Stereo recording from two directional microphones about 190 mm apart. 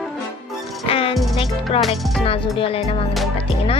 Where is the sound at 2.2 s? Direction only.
30° left (ahead or behind).